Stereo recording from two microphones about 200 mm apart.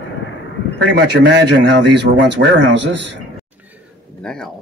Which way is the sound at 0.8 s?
60° right (ahead or behind).